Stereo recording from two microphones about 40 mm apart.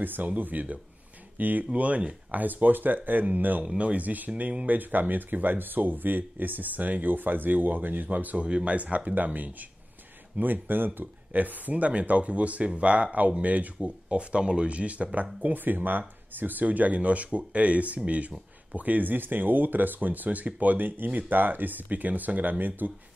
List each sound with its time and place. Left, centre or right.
0.0 s speech: right
1.7 s speech: right
2.4 s speech: right
3.7 s speech: right
13.8 s speech: right
15.4 s speech: right